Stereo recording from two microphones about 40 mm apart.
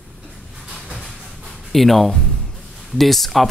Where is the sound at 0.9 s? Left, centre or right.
Centre.